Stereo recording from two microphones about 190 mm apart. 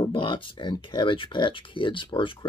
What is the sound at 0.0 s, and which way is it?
Speech, 25° left (ahead or behind).